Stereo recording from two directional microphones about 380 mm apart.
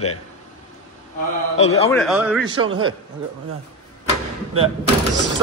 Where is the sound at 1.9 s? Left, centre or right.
Centre.